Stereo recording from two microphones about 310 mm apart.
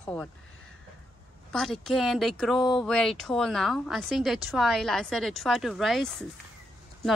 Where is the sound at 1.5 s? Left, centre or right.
Centre.